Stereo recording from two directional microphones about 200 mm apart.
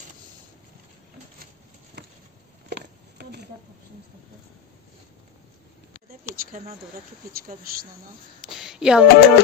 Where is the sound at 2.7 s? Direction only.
55° right (ahead or behind).